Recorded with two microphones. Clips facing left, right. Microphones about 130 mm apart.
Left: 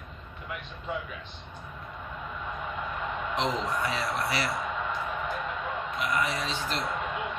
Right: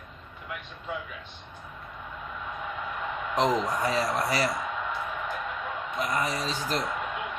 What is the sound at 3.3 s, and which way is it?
Speech, 40° right (ahead or behind).